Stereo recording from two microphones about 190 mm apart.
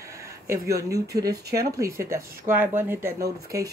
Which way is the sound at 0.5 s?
15° right (ahead or behind).